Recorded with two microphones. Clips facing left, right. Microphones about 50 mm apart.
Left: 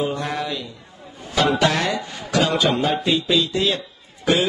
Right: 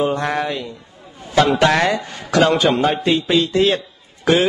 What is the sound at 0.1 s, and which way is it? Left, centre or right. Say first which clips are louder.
Music: right 5 dB; right.